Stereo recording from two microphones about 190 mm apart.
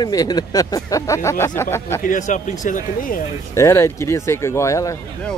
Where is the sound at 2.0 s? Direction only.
40° left (ahead or behind).